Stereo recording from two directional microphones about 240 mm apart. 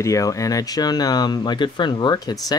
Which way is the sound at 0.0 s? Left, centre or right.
Centre.